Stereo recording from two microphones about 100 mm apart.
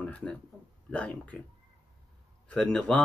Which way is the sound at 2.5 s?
10° left (ahead or behind).